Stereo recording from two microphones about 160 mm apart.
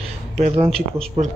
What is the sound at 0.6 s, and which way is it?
Speech, 35° right (ahead or behind).